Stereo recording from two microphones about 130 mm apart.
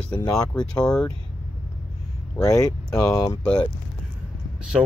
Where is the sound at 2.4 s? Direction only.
25° left (ahead or behind).